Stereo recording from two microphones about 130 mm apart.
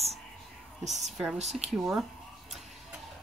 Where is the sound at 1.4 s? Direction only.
60° right (ahead or behind).